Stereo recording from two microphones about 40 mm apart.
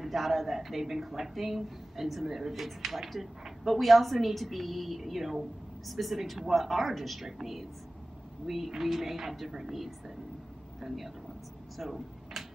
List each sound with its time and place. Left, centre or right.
0.0 s speech: centre
8.5 s a woman's voice: centre
11.7 s vehicle: centre